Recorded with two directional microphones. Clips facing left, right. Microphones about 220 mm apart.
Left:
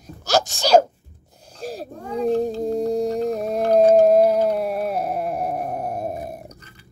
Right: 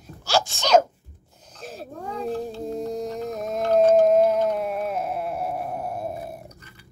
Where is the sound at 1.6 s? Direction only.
35° left (ahead or behind).